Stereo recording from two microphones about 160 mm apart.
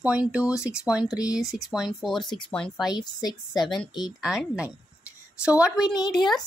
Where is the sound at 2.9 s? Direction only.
25° left (ahead or behind).